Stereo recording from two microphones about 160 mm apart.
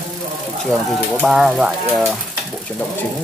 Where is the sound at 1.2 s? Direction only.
5° right (ahead or behind).